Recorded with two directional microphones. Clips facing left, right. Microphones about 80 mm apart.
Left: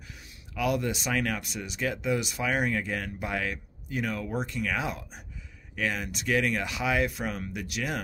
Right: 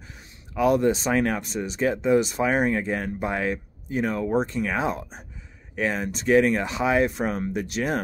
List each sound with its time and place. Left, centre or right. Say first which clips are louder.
0.6 s speech: right 8 dB; right